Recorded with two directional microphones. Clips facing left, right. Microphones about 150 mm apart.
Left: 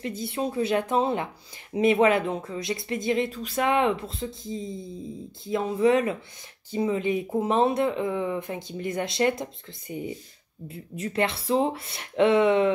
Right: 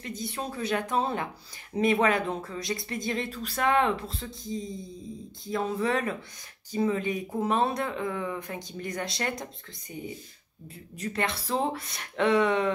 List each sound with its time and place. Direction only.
0.0 s speech: 25° left (ahead or behind)